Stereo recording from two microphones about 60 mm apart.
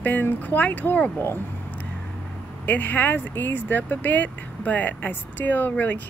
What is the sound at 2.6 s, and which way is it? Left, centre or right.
Speech, left.